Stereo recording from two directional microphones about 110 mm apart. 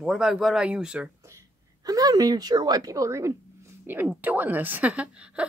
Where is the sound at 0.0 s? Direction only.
5° right (ahead or behind).